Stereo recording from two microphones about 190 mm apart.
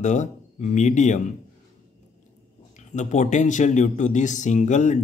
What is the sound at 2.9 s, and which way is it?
A man's voice, 40° left (ahead or behind).